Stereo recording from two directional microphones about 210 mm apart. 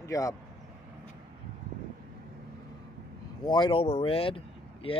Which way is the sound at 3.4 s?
20° left (ahead or behind).